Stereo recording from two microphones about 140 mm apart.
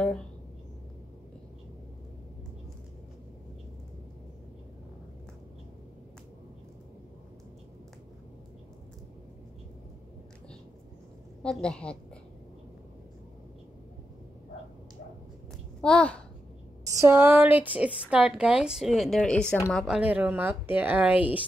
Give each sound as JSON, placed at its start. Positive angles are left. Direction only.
{"t": 11.4, "sound": "a woman's voice", "side_deg": 5}
{"t": 15.8, "sound": "a woman's voice", "side_deg": 5}
{"t": 16.8, "sound": "a woman's voice", "side_deg": -20}
{"t": 20.0, "sound": "a woman's voice", "side_deg": -10}